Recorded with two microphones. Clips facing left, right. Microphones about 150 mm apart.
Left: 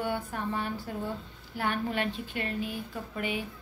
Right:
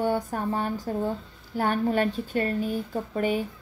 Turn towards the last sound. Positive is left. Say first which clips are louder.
# right 8 dB
turn(degrees=-40)  # may be behind; listen again after turning